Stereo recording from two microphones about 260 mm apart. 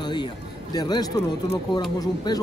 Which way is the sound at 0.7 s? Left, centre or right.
Centre.